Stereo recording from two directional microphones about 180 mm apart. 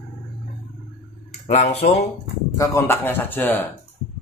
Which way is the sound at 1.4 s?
40° left (ahead or behind).